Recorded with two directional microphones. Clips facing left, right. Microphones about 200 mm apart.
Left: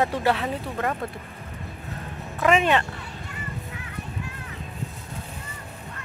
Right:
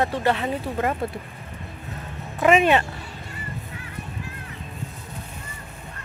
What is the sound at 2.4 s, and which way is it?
Speech, 15° right (ahead or behind).